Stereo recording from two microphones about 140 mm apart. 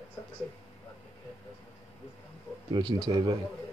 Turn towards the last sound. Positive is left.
turn(degrees=-35)  # may be behind; listen again after turning